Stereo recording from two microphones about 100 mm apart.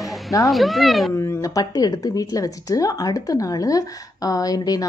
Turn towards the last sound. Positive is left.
turn(degrees=40)  # may be behind; listen again after turning